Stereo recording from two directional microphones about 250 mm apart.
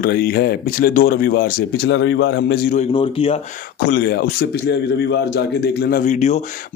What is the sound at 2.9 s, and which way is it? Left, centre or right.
Speech, left.